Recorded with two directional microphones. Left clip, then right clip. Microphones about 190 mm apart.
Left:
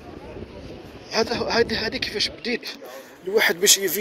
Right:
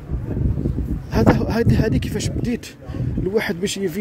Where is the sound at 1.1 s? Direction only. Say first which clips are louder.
Right 2 dB; 25° right (ahead or behind).